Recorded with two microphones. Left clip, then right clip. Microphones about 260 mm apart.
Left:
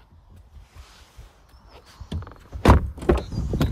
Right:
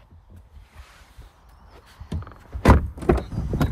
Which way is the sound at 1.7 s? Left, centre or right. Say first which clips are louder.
Even; left.